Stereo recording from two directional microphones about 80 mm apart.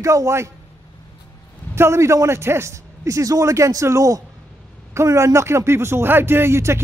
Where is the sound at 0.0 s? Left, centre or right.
Right.